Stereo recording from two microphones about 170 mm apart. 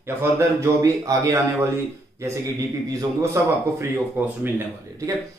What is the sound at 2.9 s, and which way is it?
A man's voice, 20° right (ahead or behind).